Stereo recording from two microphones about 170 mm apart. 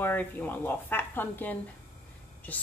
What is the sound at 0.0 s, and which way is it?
Speech, 10° left (ahead or behind).